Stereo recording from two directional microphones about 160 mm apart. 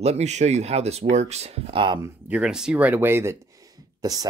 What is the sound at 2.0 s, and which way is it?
Speech, 10° right (ahead or behind).